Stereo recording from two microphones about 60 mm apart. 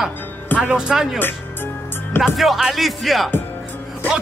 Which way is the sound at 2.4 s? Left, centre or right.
Centre.